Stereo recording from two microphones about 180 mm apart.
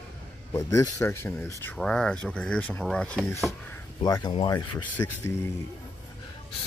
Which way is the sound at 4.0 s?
20° left (ahead or behind).